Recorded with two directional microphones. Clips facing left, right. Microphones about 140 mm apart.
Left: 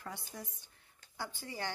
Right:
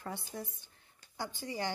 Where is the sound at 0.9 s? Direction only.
20° right (ahead or behind).